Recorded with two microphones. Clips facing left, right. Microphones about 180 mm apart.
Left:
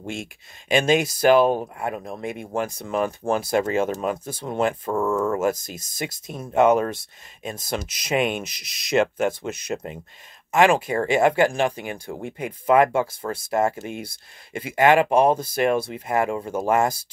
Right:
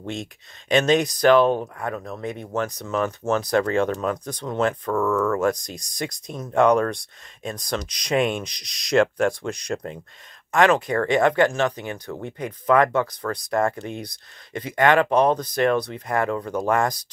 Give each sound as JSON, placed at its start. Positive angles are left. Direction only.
{"t": 0.0, "sound": "speech", "side_deg": 5}
{"t": 2.0, "sound": "speech", "side_deg": 25}
{"t": 2.2, "sound": "speech", "side_deg": 10}
{"t": 4.8, "sound": "speech", "side_deg": 25}
{"t": 5.4, "sound": "speech", "side_deg": 5}
{"t": 16.3, "sound": "speech", "side_deg": 25}
{"t": 16.6, "sound": "speech", "side_deg": 5}